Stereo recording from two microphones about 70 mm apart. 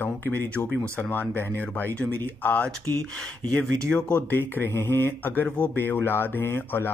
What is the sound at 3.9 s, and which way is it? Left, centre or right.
Speech, centre.